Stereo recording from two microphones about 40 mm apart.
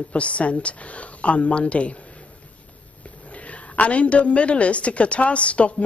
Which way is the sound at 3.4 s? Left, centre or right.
Left.